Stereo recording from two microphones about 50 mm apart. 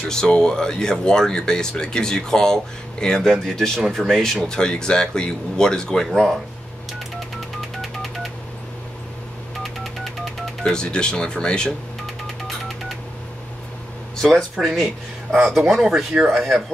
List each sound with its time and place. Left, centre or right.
0.1 s speech: centre
4.5 s speech: centre
7.3 s telephone dialing: centre
10.6 s speech: centre
14.2 s speech: centre
15.3 s speech: centre